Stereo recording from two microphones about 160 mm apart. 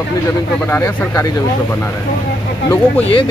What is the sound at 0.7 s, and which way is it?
Speech, 15° left (ahead or behind).